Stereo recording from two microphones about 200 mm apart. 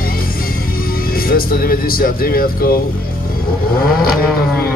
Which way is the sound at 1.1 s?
45° left (ahead or behind).